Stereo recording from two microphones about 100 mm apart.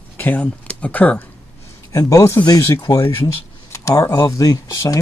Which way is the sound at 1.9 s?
35° left (ahead or behind).